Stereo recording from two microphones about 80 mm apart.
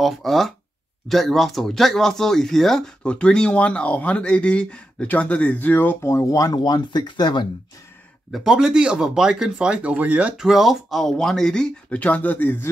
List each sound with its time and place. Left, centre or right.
0.0 s speech: centre; by 5.9 s left
6.0 s speech: left
6.6 s speech: left
8.5 s speech: centre; by 12.6 s left